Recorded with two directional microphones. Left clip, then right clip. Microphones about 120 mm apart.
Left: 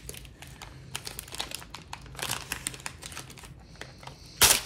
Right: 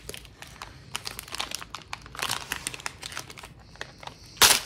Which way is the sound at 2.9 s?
25° right (ahead or behind).